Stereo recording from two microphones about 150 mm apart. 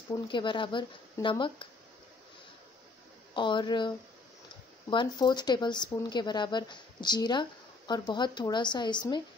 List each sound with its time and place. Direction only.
0.1 s speech: 30° left (ahead or behind)
3.3 s speech: 30° left (ahead or behind)